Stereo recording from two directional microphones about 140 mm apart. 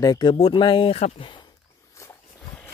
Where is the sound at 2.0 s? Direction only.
20° left (ahead or behind).